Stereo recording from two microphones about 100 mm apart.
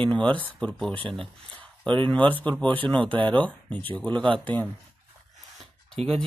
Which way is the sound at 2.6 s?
55° right (ahead or behind).